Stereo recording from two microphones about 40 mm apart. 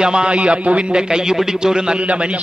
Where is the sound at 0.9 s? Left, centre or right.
Centre.